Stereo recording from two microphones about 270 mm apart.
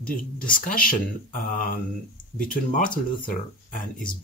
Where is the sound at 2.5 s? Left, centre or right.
Left.